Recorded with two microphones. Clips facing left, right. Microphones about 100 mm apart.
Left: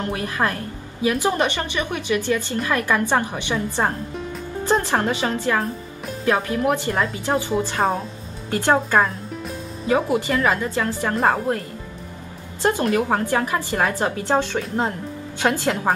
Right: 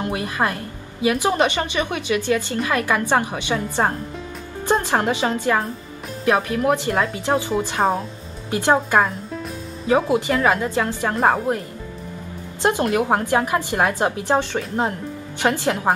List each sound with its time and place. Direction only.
0.0 s a woman's voice: 15° right (ahead or behind)
7.8 s speech: centre (ahead or behind)
8.5 s a woman's voice: 15° right (ahead or behind)
12.9 s a woman's voice: 20° right (ahead or behind)
15.6 s a woman's voice: 15° right (ahead or behind)